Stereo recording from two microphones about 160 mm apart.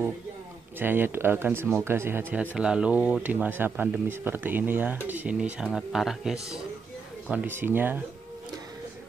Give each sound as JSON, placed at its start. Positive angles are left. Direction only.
{"t": 0.7, "sound": "speech", "side_deg": -15}